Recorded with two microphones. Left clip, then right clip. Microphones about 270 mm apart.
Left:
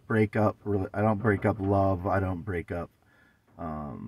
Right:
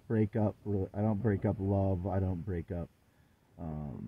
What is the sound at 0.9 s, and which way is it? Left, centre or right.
Speech, left.